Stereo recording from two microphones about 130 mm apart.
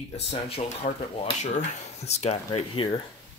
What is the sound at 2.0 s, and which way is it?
Speech, 55° left (ahead or behind).